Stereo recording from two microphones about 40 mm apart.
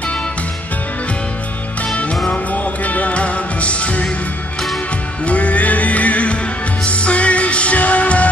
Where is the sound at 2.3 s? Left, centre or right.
Left.